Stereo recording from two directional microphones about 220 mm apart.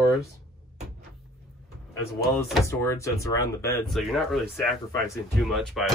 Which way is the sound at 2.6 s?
15° left (ahead or behind).